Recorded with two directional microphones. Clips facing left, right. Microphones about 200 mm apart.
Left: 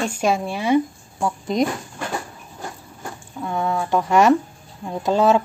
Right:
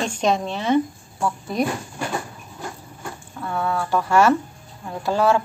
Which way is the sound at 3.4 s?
15° left (ahead or behind).